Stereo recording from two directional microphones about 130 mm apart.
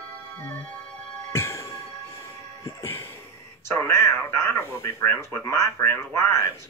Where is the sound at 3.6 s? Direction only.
20° left (ahead or behind).